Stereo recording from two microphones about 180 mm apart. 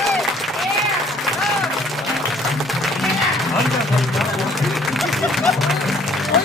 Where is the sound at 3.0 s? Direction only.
Centre (ahead or behind).